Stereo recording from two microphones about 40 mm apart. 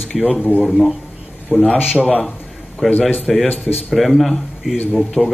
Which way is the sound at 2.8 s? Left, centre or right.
Centre.